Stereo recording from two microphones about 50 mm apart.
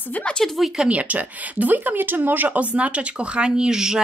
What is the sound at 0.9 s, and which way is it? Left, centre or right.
Speech, right.